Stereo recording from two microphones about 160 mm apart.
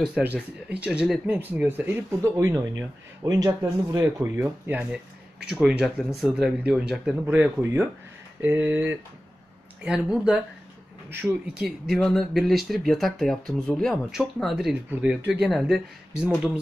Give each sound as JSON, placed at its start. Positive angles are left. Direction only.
{"t": 0.0, "sound": "speech", "side_deg": -5}
{"t": 11.6, "sound": "speech", "side_deg": 0}